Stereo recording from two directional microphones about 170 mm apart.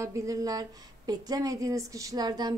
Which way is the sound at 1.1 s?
20° right (ahead or behind).